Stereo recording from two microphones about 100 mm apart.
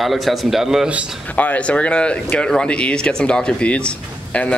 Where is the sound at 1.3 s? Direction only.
15° left (ahead or behind).